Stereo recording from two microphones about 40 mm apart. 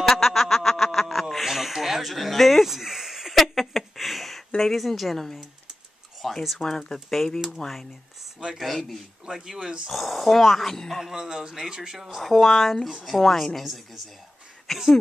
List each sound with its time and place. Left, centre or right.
0.0 s a sound: centre
4.6 s a woman's voice: centre
9.2 s speech: centre
9.8 s speech: centre
11.1 s speech: centre
12.2 s a woman's voice: centre
14.7 s speech: centre